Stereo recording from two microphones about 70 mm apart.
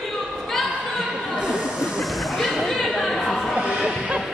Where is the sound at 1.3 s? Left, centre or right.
Centre.